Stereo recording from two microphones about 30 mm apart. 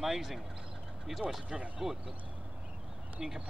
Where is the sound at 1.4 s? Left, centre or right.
Right.